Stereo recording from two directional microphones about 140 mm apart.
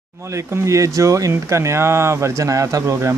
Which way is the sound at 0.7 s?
20° right (ahead or behind).